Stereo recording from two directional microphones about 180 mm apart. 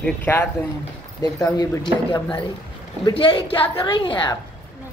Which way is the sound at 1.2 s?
20° left (ahead or behind).